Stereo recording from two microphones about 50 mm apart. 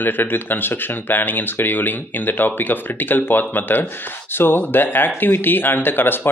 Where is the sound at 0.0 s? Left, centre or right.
Left.